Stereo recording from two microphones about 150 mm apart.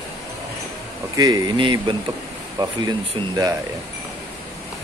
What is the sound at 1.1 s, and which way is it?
Speech, 25° right (ahead or behind).